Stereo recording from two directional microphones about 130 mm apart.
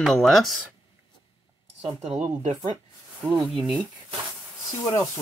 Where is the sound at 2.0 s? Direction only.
5° right (ahead or behind).